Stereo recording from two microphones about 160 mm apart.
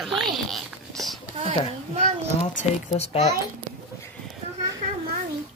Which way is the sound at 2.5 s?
50° left (ahead or behind).